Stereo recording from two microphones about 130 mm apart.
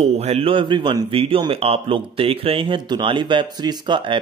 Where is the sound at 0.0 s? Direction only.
55° right (ahead or behind).